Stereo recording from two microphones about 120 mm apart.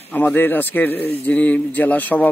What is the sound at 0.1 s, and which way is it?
A man's voice, 15° left (ahead or behind).